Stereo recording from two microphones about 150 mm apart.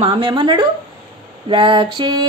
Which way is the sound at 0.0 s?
35° right (ahead or behind).